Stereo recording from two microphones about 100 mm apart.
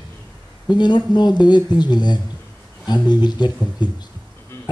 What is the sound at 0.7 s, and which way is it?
Speech, 45° left (ahead or behind).